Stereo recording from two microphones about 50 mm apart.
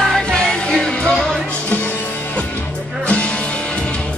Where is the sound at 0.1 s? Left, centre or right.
Centre.